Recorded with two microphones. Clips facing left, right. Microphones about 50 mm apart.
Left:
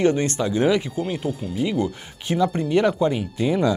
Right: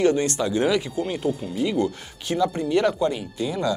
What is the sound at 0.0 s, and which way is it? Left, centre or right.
Speech, left.